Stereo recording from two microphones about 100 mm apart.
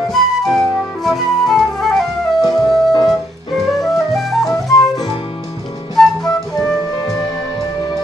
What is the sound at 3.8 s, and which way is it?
Flute, centre (ahead or behind).